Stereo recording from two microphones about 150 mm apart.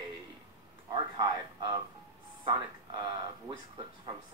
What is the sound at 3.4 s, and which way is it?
Speech, 35° right (ahead or behind).